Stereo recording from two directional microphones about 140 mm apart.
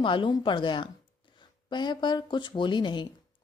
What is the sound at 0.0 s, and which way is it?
Speech, 35° left (ahead or behind).